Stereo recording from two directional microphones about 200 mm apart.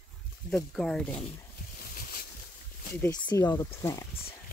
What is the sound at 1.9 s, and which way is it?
Boat, 45° left (ahead or behind).